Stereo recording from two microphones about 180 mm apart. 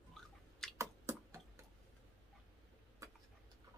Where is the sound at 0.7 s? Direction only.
15° right (ahead or behind).